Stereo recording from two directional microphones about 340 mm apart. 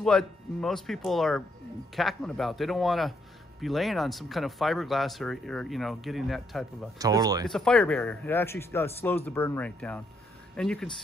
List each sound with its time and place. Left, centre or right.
0.0 s speech: centre
7.0 s speech: centre
7.4 s speech: centre